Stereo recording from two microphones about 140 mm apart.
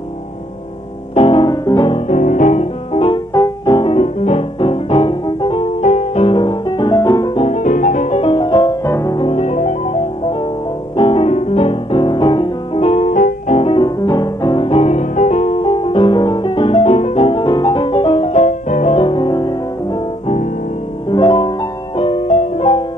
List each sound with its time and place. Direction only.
1.1 s music: 40° left (ahead or behind)
2.0 s music: 55° left (ahead or behind)
3.3 s music: 30° left (ahead or behind)
3.9 s music: 50° left (ahead or behind)
6.2 s music: 35° left (ahead or behind)
7.3 s music: 55° left (ahead or behind); by 8.7 s 35° left (ahead or behind)
8.8 s music: 20° left (ahead or behind)
9.2 s music: 45° left (ahead or behind)
11.0 s music: 40° left (ahead or behind)
12.8 s music: 50° left (ahead or behind)
13.6 s music: 40° left (ahead or behind); by 18.9 s 60° left (ahead or behind)
18.9 s music: 35° left (ahead or behind)
21.1 s music: 35° left (ahead or behind); by 22.7 s 55° left (ahead or behind)